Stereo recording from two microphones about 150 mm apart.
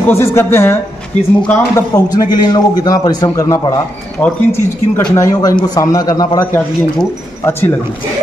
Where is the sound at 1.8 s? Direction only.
25° left (ahead or behind).